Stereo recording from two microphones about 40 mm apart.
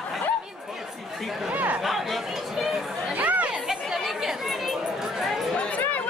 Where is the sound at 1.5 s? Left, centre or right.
Right.